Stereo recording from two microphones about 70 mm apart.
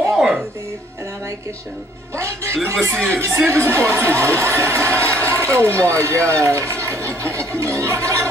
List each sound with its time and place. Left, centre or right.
0.1 s music: centre
2.1 s speech: right